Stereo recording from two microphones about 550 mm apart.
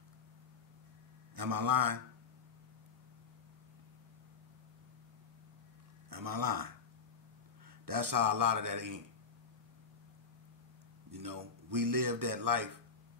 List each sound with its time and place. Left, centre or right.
1.3 s speech: right
6.0 s speech: right
7.8 s speech: right
11.1 s speech: right